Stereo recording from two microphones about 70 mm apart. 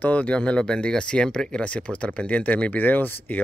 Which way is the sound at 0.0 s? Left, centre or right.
Left.